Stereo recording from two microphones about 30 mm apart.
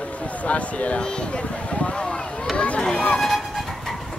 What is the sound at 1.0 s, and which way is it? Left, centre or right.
Speech, left.